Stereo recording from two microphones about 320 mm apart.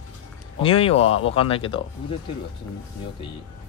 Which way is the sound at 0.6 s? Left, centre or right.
Centre.